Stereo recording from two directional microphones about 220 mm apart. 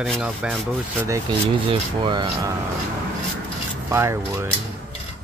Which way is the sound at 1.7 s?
20° right (ahead or behind).